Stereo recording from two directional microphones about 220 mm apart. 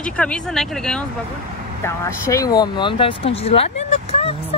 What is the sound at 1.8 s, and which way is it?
Speech, 15° left (ahead or behind).